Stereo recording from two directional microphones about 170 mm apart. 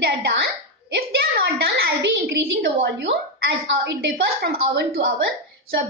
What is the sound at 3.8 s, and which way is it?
A woman's voice, 70° right (ahead or behind).